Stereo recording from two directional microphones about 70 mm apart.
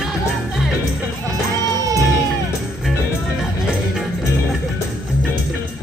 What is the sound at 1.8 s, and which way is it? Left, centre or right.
Music, right.